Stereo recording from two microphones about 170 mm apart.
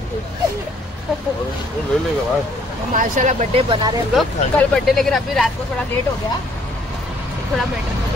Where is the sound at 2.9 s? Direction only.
50° right (ahead or behind).